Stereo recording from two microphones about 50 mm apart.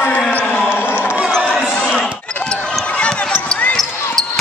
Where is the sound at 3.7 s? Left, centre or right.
Centre.